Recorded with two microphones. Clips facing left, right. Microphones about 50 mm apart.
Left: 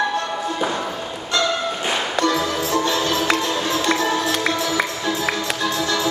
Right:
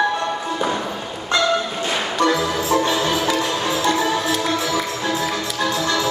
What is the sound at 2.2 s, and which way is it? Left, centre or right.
Music, centre.